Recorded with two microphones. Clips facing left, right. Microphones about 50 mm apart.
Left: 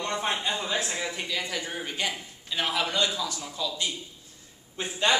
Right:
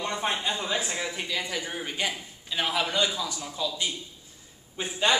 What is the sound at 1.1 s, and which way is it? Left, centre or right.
Speech, centre.